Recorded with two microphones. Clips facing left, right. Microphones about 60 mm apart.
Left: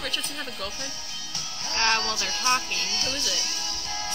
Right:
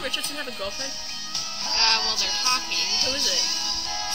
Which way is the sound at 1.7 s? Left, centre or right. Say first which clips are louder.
Left 1 dB; left.